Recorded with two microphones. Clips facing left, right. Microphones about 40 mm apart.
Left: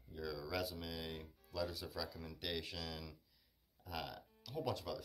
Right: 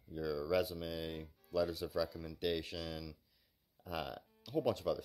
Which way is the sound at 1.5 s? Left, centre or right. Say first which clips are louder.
Right 7 dB; centre.